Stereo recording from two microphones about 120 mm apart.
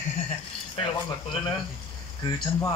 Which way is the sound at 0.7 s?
45° left (ahead or behind).